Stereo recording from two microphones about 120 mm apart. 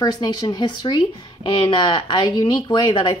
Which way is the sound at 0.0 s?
35° left (ahead or behind).